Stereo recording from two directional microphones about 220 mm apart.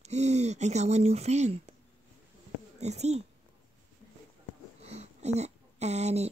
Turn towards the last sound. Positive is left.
turn(degrees=-30)  # may be behind; listen again after turning